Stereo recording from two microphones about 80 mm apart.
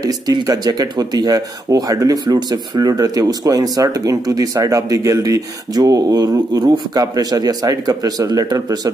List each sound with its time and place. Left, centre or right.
0.0 s speech: right
2.2 s speech: right